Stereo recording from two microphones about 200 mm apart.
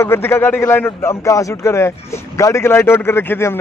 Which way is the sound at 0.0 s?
10° left (ahead or behind).